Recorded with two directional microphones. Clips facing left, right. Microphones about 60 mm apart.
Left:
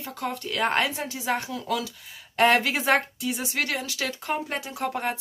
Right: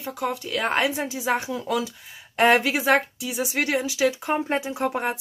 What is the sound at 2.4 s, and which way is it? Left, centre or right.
Speech, centre.